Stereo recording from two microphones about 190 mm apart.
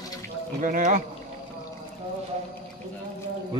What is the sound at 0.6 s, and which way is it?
Speech, 45° right (ahead or behind).